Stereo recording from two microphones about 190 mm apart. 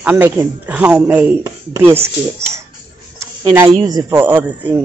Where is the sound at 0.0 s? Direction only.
10° right (ahead or behind).